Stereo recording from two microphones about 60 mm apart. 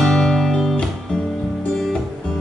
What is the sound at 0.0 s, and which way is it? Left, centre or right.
Music, centre.